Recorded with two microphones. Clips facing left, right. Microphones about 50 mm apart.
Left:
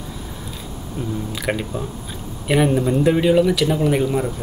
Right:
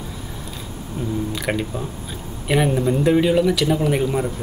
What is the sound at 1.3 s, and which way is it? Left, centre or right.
A man's voice, centre.